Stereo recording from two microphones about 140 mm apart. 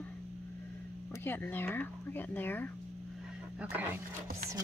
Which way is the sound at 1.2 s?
15° left (ahead or behind).